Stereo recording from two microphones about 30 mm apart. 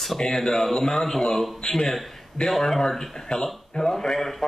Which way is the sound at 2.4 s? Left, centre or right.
Left.